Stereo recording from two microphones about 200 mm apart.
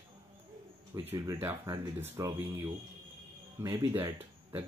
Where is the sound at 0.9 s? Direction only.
15° right (ahead or behind).